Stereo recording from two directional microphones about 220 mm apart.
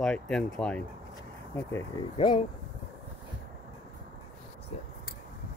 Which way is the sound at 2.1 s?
20° left (ahead or behind).